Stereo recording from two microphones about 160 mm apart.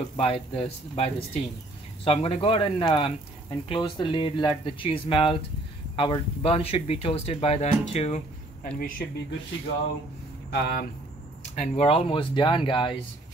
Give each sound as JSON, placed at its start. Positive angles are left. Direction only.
{"t": 0.2, "sound": "speech", "side_deg": 35}
{"t": 8.7, "sound": "speech", "side_deg": 65}
{"t": 10.5, "sound": "speech", "side_deg": 80}
{"t": 11.5, "sound": "speech", "side_deg": 40}